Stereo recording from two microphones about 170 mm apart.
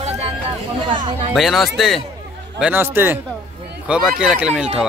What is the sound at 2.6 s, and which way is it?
A man's voice, 10° right (ahead or behind).